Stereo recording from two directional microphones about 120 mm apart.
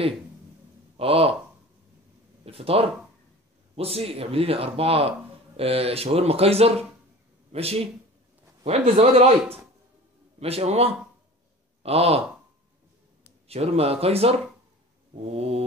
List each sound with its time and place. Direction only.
0.9 s speech: 55° right (ahead or behind)
2.4 s speech: 55° right (ahead or behind)
13.5 s speech: 60° right (ahead or behind)
15.3 s speech: 55° right (ahead or behind)